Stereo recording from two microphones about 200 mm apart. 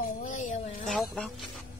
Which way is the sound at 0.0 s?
40° left (ahead or behind).